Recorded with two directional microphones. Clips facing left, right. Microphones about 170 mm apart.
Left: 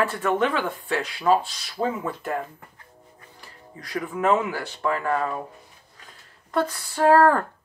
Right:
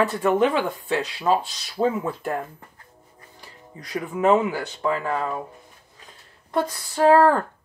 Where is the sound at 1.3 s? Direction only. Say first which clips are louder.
Left 2 dB; 15° right (ahead or behind).